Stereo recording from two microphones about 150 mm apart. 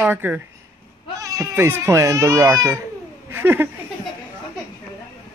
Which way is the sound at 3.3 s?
15° right (ahead or behind).